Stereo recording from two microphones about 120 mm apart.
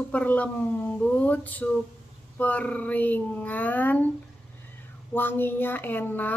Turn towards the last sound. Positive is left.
turn(degrees=15)  # may be behind; listen again after turning